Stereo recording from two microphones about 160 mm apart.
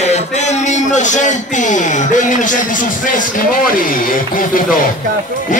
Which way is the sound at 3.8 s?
60° left (ahead or behind).